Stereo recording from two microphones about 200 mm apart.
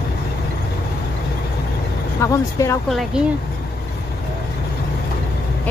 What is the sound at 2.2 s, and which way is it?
Speech, 15° left (ahead or behind).